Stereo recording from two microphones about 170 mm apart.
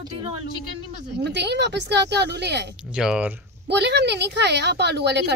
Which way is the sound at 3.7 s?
80° right.